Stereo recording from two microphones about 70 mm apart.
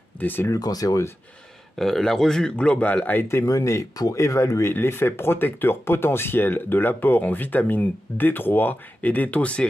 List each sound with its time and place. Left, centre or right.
0.2 s speech: left
0.5 s speech: left
1.8 s speech: centre; by 3.3 s left
3.3 s speech: left
4.7 s speech: left; by 9.7 s centre